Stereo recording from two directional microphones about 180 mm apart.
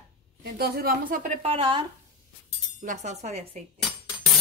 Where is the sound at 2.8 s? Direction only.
40° right (ahead or behind).